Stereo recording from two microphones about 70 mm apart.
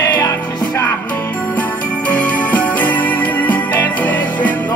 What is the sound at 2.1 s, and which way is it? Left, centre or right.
Music, left.